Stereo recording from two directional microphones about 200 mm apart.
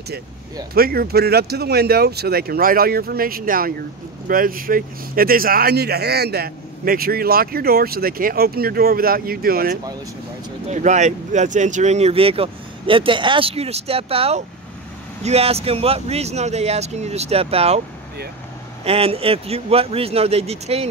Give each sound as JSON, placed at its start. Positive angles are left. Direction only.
{"t": 0.7, "sound": "speech", "side_deg": -50}
{"t": 10.7, "sound": "speech", "side_deg": -35}
{"t": 18.9, "sound": "a man's voice", "side_deg": -30}